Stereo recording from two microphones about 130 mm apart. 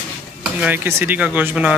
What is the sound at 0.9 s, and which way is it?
Speech, 15° right (ahead or behind).